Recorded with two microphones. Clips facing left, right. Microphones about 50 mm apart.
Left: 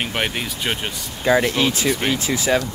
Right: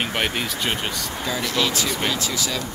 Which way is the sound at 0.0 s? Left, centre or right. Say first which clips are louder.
Even; centre.